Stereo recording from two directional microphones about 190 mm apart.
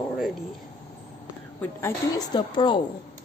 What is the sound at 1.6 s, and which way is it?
A woman's voice, 15° left (ahead or behind).